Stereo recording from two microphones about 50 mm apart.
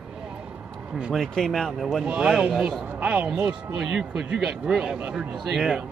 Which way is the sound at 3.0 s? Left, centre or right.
Right.